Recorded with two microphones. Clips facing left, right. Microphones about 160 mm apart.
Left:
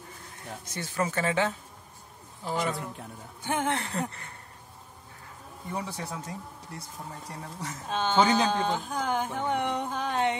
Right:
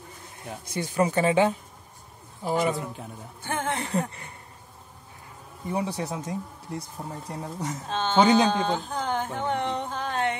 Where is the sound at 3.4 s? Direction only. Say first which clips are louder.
Left 1 dB; 15° left (ahead or behind).